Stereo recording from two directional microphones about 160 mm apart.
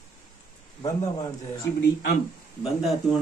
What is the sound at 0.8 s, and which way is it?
Speech, 20° left (ahead or behind).